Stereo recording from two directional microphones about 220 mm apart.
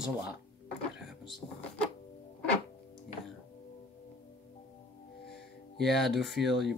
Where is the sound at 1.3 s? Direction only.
5° left (ahead or behind).